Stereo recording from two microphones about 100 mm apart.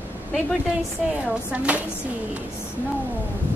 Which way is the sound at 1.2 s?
15° right (ahead or behind).